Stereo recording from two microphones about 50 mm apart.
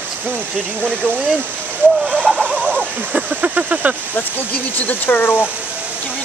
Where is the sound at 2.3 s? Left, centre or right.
Centre.